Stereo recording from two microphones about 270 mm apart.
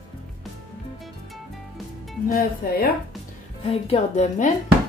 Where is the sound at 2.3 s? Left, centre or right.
Left.